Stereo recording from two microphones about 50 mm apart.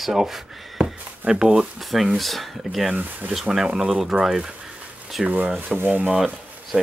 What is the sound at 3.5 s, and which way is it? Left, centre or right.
Speech, centre.